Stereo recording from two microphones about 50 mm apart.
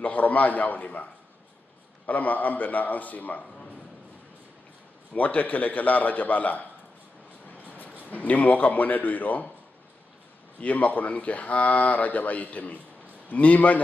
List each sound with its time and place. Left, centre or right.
0.0 s speech: left
2.0 s speech: left
5.1 s speech: left
7.5 s train: left
8.0 s speech: left
10.6 s speech: left